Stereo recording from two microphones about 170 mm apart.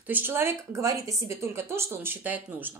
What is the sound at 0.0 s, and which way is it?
Speech, 10° right (ahead or behind).